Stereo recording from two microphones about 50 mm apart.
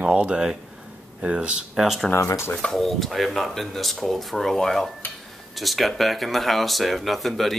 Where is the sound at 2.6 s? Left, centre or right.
Centre.